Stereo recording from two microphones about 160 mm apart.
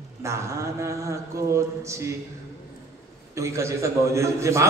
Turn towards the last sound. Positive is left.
turn(degrees=-20)  # may be behind; listen again after turning